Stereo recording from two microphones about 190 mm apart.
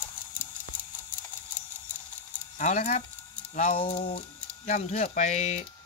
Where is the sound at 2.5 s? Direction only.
40° left (ahead or behind).